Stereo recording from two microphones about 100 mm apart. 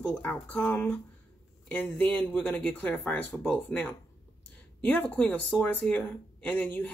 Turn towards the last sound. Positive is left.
turn(degrees=15)  # may be behind; listen again after turning